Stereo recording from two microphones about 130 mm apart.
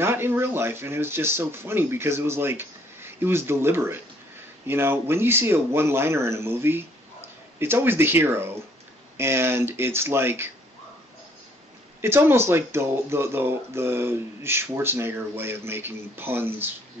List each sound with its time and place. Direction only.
0.0 s a man's voice: 15° right (ahead or behind)
12.0 s speech: 20° right (ahead or behind)